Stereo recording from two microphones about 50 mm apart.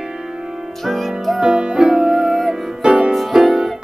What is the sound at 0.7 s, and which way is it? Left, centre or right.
Music, centre.